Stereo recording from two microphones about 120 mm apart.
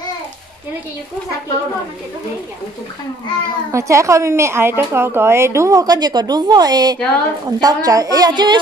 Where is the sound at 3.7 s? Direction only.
25° right (ahead or behind).